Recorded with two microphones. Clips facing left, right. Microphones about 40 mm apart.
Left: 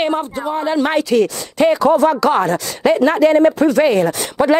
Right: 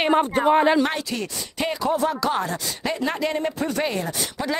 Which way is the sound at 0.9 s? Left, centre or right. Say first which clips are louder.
Left 14 dB; left.